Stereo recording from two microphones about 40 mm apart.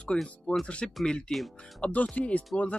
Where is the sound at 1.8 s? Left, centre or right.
Left.